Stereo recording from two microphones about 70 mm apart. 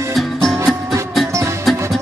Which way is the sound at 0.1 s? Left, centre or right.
Centre.